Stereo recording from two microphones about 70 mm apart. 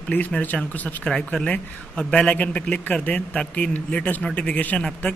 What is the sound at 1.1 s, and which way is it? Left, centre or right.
A man's voice, centre.